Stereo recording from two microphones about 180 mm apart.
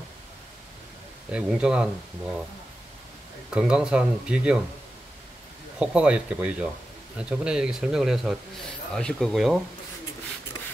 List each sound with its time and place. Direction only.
1.3 s speech: 5° right (ahead or behind)
3.4 s speech: 5° right (ahead or behind)
5.8 s speech: 5° right (ahead or behind)